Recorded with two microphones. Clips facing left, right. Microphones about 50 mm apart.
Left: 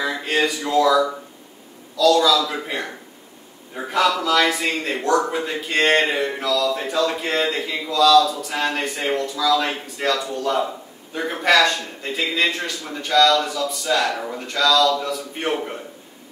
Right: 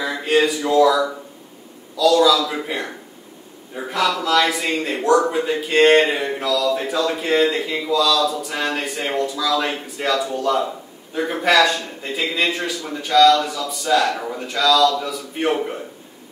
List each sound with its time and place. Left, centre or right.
0.1 s speech: centre
2.0 s a sound: centre
4.3 s speech: centre